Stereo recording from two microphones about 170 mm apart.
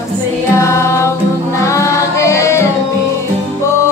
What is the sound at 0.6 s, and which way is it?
Music, 15° left (ahead or behind).